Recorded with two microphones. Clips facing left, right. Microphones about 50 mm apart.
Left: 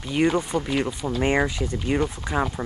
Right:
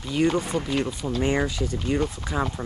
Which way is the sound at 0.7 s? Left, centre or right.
Centre.